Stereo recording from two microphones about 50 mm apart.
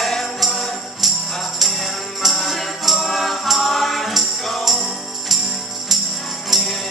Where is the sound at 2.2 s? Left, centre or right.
Centre.